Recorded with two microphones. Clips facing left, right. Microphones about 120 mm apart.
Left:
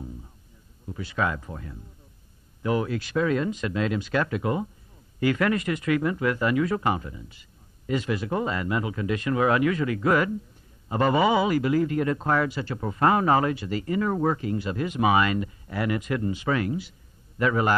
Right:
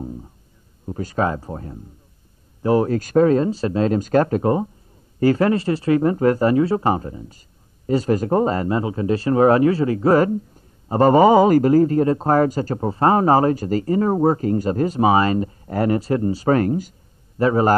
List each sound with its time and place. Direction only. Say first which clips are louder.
0.8 s a man's voice: right 6 dB; 40° right (ahead or behind)